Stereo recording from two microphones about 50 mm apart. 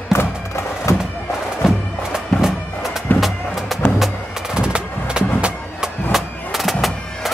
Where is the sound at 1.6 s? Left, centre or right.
Centre.